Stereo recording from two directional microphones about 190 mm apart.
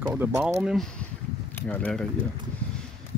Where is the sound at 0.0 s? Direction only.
10° right (ahead or behind).